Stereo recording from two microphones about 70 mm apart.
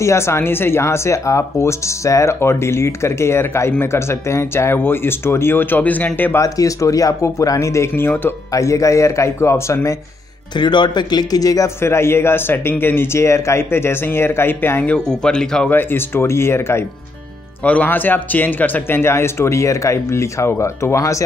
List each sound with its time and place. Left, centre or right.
0.0 s speech: left
6.4 s speech: left
7.9 s speech: left
8.5 s speech: left
10.6 s speech: left
11.8 s speech: left
14.8 s speech: centre
15.7 s speech: left
17.6 s speech: left